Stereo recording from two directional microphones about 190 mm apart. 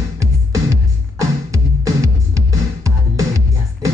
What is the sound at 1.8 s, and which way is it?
Music, 15° right (ahead or behind).